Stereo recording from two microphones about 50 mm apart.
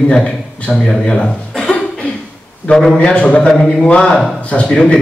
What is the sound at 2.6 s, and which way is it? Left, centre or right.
A man's voice, centre.